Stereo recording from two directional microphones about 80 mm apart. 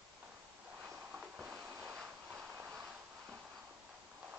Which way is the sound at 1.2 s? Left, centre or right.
Centre.